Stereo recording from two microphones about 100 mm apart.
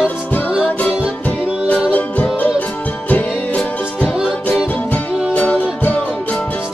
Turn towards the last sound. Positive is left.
turn(degrees=15)  # may be behind; listen again after turning